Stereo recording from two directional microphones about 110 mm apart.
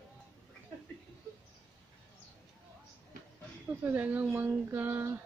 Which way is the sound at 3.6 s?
15° right (ahead or behind).